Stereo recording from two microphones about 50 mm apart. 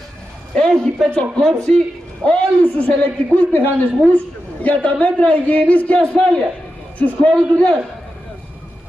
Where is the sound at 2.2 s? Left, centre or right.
Left.